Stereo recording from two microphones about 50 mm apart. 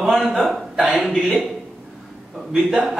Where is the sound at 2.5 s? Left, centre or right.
Centre.